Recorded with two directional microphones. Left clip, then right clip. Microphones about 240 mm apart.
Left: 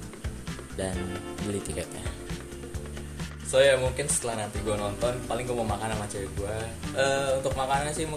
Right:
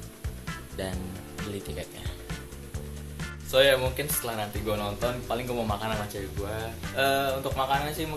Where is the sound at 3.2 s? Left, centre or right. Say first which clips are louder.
Even; centre.